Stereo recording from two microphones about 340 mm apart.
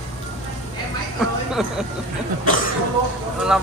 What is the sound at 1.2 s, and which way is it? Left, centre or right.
Speech, centre.